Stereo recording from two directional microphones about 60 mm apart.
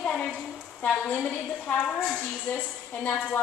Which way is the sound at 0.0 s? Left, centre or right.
Left.